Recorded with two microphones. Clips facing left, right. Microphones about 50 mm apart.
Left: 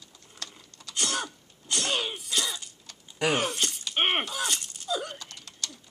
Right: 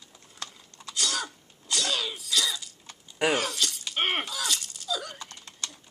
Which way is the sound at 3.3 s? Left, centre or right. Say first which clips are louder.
Even; left.